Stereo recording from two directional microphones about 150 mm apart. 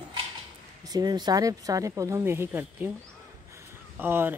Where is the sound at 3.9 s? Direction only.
15° right (ahead or behind).